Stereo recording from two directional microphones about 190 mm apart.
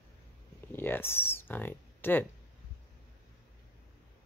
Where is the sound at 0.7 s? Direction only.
10° left (ahead or behind).